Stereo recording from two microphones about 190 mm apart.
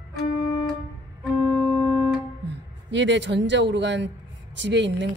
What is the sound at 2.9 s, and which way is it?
A woman's voice, 70° right (ahead or behind).